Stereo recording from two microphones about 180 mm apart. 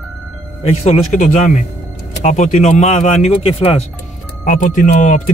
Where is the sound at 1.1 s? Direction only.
40° left (ahead or behind).